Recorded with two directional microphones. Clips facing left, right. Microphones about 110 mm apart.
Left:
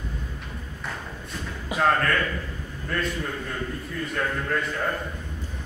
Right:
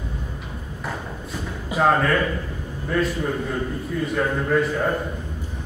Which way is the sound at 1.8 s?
10° right (ahead or behind).